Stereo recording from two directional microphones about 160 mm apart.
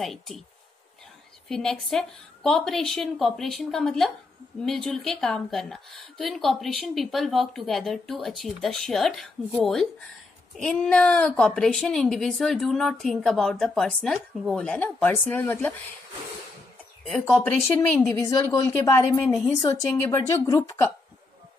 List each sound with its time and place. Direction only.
0.0 s a woman's voice: centre (ahead or behind)
1.5 s a woman's voice: 5° left (ahead or behind)
17.4 s a woman's voice: 15° left (ahead or behind)